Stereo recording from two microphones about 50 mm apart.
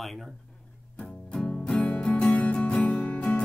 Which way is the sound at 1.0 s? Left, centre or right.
Centre.